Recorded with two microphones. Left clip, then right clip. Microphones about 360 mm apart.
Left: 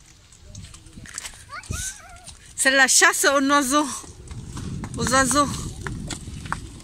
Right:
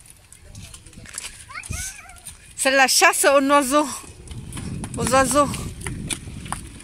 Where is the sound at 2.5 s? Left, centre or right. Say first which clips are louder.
Even; centre.